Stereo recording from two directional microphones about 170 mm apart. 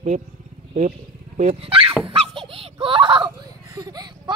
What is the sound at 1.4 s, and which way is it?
Speech, 35° right (ahead or behind).